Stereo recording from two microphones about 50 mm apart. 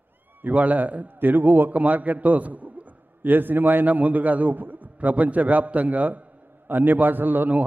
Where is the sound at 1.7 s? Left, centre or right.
Right.